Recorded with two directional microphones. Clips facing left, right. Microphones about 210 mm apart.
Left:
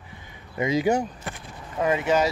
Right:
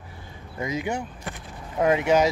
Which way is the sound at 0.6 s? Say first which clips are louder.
Left 5 dB; 25° left (ahead or behind).